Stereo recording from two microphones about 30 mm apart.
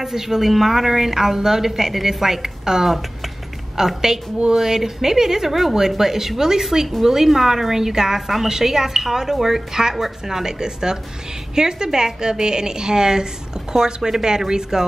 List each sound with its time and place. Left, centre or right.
0.0 s a woman's voice: centre